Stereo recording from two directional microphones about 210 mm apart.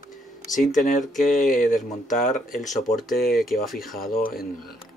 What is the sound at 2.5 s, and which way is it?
Speech, centre (ahead or behind).